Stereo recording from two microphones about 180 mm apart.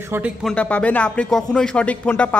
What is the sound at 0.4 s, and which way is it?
Speech, 5° left (ahead or behind).